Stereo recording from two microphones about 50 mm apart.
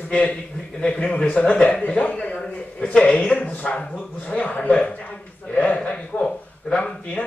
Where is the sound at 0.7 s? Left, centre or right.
Left.